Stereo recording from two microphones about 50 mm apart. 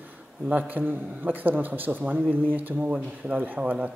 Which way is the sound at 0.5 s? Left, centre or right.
Right.